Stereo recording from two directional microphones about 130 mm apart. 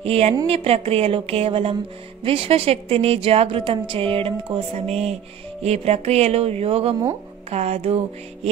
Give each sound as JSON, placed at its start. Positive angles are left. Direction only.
{"t": 0.0, "sound": "a woman's voice", "side_deg": -50}